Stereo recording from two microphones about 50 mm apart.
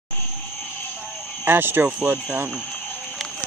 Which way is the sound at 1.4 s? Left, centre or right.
Right.